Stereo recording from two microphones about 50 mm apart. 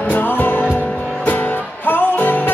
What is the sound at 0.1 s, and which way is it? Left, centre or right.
Music, left.